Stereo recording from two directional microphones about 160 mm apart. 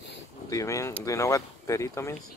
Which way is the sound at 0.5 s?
20° left (ahead or behind).